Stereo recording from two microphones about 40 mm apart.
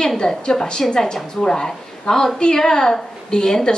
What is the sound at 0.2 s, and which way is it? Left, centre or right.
A woman's voice, centre.